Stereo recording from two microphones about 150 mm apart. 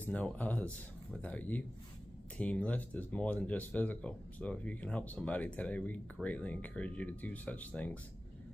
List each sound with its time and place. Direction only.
0.0 s speech: 10° left (ahead or behind)